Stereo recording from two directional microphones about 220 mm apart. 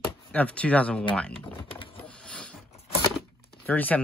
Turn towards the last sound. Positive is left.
turn(degrees=5)  # may be behind; listen again after turning